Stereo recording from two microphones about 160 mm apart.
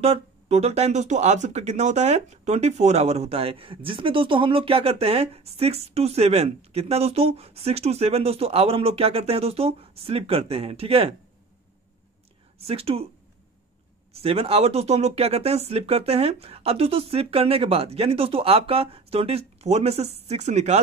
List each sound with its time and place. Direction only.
0.0 s speech: 40° right (ahead or behind)
12.5 s speech: 40° right (ahead or behind)
14.1 s speech: 40° right (ahead or behind)